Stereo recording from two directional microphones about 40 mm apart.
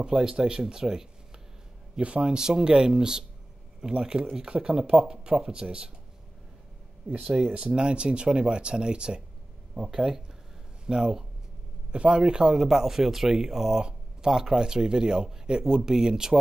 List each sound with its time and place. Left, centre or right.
0.0 s speech: centre
2.0 s speech: right
7.1 s speech: right
9.8 s speech: centre
12.6 s speech: centre